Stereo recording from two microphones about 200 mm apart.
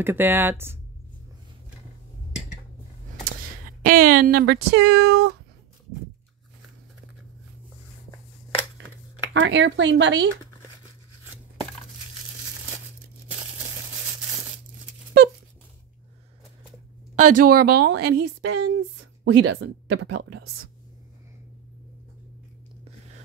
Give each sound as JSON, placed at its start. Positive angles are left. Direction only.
{"t": 0.0, "sound": "speech", "side_deg": -10}
{"t": 3.3, "sound": "speech", "side_deg": -45}
{"t": 9.3, "sound": "speech", "side_deg": -65}
{"t": 17.1, "sound": "speech", "side_deg": -40}